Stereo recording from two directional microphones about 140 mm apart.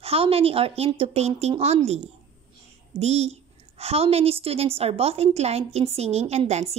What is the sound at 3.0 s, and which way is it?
A woman's voice, 50° right (ahead or behind).